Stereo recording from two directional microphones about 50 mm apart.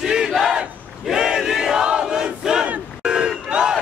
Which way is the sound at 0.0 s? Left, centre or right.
Centre.